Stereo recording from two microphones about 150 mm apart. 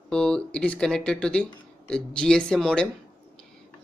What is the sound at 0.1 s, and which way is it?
Speech, 5° left (ahead or behind).